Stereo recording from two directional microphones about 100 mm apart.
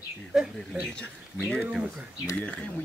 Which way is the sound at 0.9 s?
10° left (ahead or behind).